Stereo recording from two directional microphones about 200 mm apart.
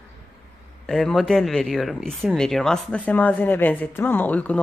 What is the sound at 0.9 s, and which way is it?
Speech, centre (ahead or behind).